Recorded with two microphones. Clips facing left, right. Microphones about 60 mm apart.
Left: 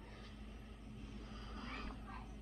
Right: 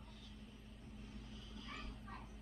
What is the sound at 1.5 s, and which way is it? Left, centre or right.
Vehicle, left.